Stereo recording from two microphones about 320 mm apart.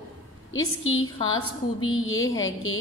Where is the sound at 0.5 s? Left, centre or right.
Left.